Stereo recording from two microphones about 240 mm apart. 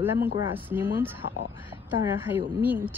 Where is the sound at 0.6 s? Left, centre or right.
Centre.